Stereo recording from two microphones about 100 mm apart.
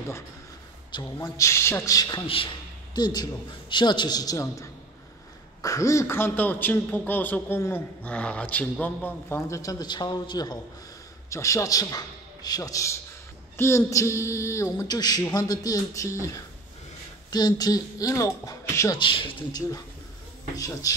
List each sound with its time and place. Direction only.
0.9 s speech: 35° left (ahead or behind)
2.2 s speech: 65° left (ahead or behind)
2.9 s a man's voice: 45° left (ahead or behind); by 8.1 s 25° left (ahead or behind)
8.1 s speech: 10° left (ahead or behind)
9.5 s a man's voice: 35° left (ahead or behind)
11.2 s a man's voice: 30° left (ahead or behind)
14.9 s speech: 40° left (ahead or behind)
18.9 s speech: 60° left (ahead or behind)
20.5 s speech: 35° left (ahead or behind)